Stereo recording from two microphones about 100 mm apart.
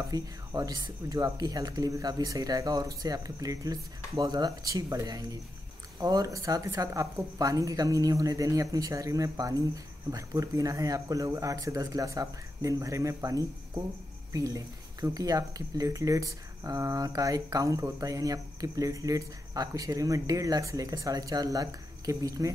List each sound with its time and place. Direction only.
0.1 s speech: 35° right (ahead or behind)